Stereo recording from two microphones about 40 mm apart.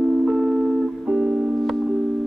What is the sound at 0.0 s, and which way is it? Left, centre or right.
Music, centre.